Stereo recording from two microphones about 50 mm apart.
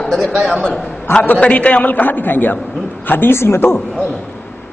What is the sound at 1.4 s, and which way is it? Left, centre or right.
A man's voice, left.